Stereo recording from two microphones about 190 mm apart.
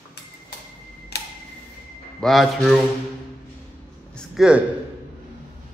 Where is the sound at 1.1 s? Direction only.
60° left (ahead or behind).